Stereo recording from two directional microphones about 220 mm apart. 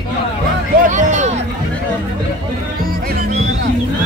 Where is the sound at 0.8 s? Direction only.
35° right (ahead or behind).